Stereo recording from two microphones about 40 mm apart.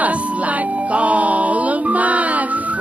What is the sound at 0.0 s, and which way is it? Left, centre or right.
Music, right.